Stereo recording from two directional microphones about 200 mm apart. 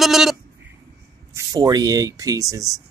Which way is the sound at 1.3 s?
20° right (ahead or behind).